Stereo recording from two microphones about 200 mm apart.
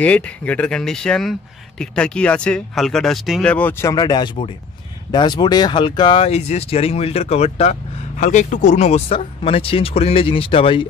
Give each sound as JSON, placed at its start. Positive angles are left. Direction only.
{"t": 0.0, "sound": "speech", "side_deg": 5}
{"t": 3.9, "sound": "speech", "side_deg": 20}